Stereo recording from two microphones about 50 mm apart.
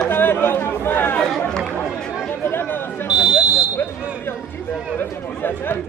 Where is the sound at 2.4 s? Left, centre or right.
Left.